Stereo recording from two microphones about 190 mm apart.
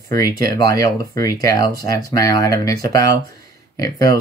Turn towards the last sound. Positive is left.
turn(degrees=20)  # may be behind; listen again after turning